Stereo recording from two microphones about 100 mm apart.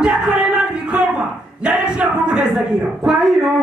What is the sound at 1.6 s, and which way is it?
A man's voice, 10° right (ahead or behind).